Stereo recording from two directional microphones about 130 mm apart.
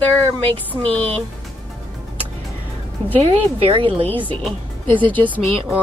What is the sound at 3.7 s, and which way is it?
Speech, 45° right (ahead or behind).